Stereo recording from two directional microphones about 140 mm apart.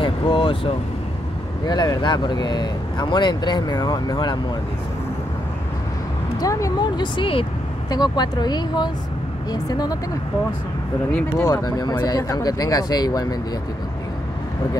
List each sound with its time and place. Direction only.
0.0 s vehicle: 35° left (ahead or behind)
1.7 s speech: 30° left (ahead or behind)
6.4 s speech: 25° left (ahead or behind)
11.4 s speech: 25° left (ahead or behind)